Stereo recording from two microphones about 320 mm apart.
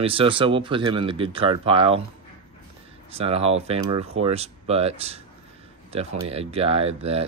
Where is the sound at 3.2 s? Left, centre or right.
Centre.